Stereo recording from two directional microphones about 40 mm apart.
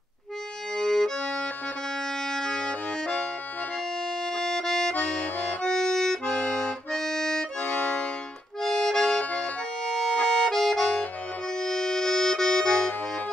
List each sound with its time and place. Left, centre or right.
0.7 s accordion: centre
1.2 s accordion: left
2.2 s accordion: centre
4.3 s music: centre
4.9 s accordion: left
5.6 s accordion: centre
7.6 s accordion: left
8.6 s accordion: centre
9.2 s accordion: left
9.8 s accordion: centre